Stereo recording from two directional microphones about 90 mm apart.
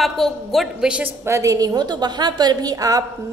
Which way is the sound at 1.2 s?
35° right (ahead or behind).